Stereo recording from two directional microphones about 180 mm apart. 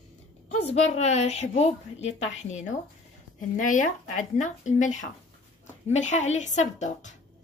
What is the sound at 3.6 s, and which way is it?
Speech, 45° left (ahead or behind).